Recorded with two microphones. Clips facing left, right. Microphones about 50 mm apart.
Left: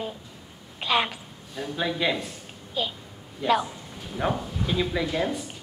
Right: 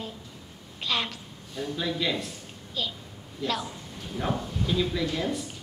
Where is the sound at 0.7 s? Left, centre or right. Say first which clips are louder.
Left 5 dB; centre.